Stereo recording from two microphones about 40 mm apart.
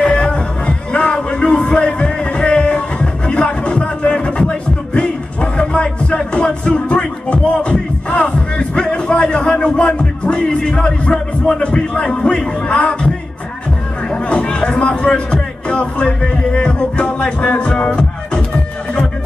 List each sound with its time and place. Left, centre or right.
0.0 s music: left
12.6 s speech: left
14.1 s music: left